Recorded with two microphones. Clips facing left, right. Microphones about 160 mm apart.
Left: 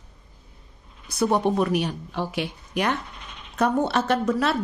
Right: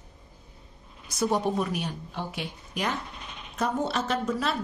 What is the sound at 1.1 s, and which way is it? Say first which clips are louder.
Speech: left 4 dB; 65° left (ahead or behind).